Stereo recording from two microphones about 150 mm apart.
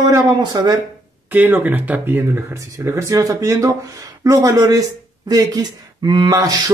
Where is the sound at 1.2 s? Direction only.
10° right (ahead or behind).